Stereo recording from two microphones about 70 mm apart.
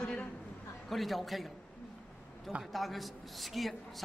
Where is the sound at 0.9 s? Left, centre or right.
Centre.